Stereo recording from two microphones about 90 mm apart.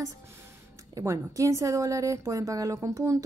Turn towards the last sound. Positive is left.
turn(degrees=-35)  # may be behind; listen again after turning